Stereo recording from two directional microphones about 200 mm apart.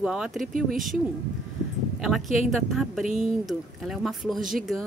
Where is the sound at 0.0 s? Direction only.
Centre (ahead or behind).